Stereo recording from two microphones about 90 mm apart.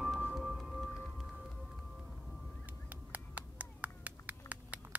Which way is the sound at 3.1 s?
15° right (ahead or behind).